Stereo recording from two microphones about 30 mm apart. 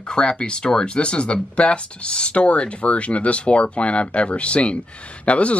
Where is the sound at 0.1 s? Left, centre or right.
Left.